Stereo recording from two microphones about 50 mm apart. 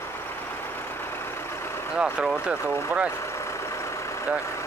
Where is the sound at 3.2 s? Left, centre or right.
Left.